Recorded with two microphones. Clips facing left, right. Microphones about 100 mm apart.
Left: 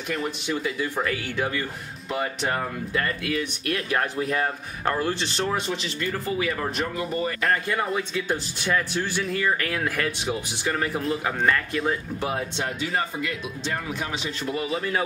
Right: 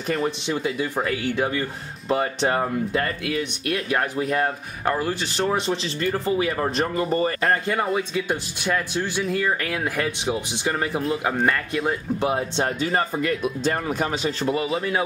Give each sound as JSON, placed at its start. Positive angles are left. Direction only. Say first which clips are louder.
{"t": 0.1, "sound": "speech", "louder": "right 4 dB", "side_deg": -30}
{"t": 0.9, "sound": "speech", "louder": "right 3 dB", "side_deg": -15}
{"t": 3.9, "sound": "speech", "louder": "right 2 dB", "side_deg": -10}
{"t": 5.4, "sound": "speech", "louder": "right 6 dB", "side_deg": -25}
{"t": 7.8, "sound": "speech", "louder": "right 3 dB", "side_deg": -10}
{"t": 12.5, "sound": "speech", "louder": "right 4 dB", "side_deg": -40}
{"t": 14.5, "sound": "speech", "louder": "right 1 dB", "side_deg": -25}